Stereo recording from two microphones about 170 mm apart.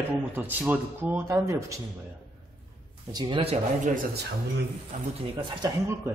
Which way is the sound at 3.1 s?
30° right (ahead or behind).